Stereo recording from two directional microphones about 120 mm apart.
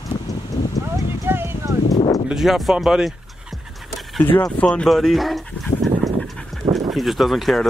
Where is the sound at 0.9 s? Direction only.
20° right (ahead or behind).